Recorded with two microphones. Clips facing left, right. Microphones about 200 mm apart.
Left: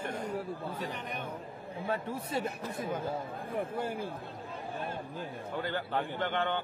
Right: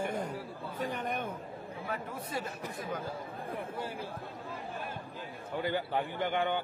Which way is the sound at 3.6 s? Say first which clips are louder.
Left 7 dB; 50° left (ahead or behind).